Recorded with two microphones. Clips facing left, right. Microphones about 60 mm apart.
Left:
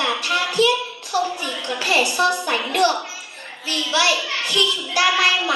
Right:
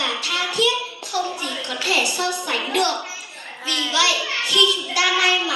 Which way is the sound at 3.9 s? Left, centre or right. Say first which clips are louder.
Left 2 dB; left.